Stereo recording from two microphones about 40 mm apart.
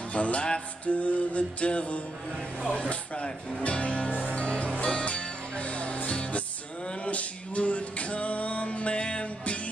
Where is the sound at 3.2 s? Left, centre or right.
Left.